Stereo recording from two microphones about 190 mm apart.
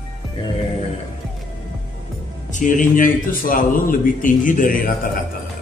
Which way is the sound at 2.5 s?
45° left (ahead or behind).